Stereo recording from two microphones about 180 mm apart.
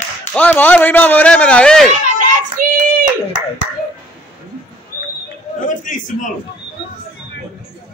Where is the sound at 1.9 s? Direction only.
40° right (ahead or behind).